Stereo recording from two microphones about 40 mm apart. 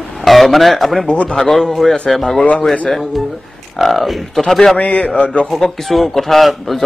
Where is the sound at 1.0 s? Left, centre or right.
Left.